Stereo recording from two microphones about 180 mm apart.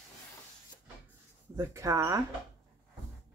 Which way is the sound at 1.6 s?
15° right (ahead or behind).